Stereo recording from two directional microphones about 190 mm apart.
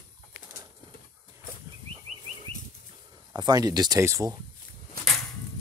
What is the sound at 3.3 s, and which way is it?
Speech, 20° right (ahead or behind).